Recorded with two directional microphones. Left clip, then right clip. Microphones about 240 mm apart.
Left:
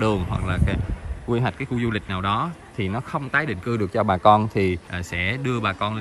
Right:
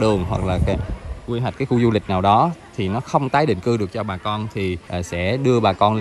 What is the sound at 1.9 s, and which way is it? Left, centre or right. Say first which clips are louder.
Speech: right 9 dB; centre.